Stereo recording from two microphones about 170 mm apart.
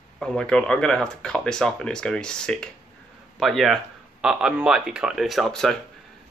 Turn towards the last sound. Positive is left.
turn(degrees=0)  # may be behind; listen again after turning